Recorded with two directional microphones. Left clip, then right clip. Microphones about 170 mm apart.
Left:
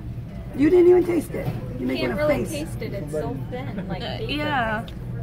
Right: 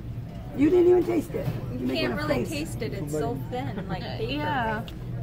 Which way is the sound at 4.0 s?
60° left (ahead or behind).